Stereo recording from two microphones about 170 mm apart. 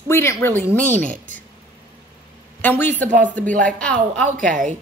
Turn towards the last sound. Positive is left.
turn(degrees=5)  # may be behind; listen again after turning